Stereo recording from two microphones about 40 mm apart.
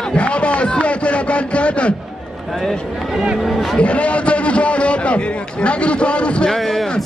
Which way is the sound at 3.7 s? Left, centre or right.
Left.